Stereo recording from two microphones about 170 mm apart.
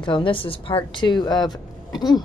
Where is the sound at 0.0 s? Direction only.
30° left (ahead or behind).